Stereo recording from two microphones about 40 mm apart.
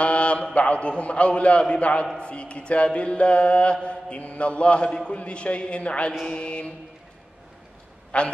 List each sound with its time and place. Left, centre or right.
0.0 s mantra: left
8.1 s mantra: left